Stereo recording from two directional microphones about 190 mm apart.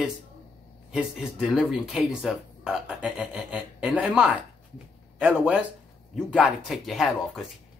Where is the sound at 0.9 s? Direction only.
5° right (ahead or behind).